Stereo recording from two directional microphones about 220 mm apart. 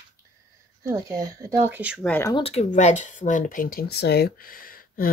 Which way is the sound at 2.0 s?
10° left (ahead or behind).